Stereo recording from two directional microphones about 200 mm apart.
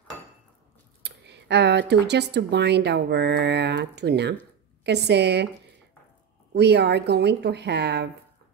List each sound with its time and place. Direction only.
1.0 s speech: 55° right (ahead or behind)
6.5 s speech: 55° right (ahead or behind)